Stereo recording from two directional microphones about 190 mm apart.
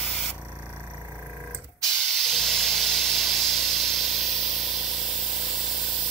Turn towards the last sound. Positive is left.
turn(degrees=0)  # may be behind; listen again after turning